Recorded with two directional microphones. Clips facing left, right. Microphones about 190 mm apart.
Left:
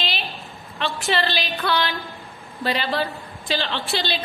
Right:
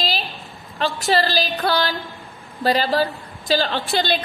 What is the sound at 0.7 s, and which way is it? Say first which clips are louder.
A woman's voice: right 4 dB; 40° right (ahead or behind).